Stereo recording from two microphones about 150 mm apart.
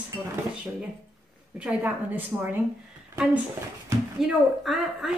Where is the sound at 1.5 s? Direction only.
10° right (ahead or behind).